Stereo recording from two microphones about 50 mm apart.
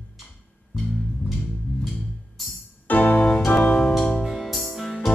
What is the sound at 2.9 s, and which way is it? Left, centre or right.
Music, left.